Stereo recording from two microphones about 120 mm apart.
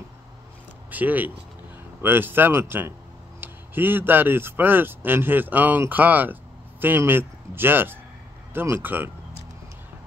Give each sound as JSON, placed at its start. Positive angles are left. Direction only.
{"t": 0.8, "sound": "speech", "side_deg": -15}